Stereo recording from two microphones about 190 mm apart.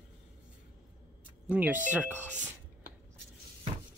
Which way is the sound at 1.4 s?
10° right (ahead or behind).